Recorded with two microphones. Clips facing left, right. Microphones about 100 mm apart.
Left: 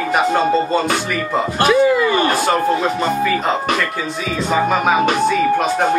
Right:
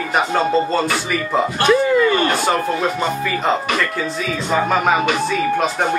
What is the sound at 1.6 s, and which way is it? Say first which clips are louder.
Speech: left 2 dB; 5° left (ahead or behind).